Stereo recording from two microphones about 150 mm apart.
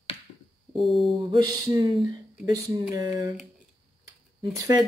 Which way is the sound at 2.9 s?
20° right (ahead or behind).